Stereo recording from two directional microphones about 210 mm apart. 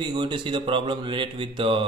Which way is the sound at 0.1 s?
20° right (ahead or behind).